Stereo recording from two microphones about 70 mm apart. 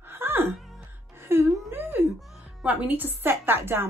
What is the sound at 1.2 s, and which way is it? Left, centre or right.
Music, right.